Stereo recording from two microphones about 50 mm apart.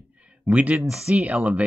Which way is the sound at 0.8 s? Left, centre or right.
Centre.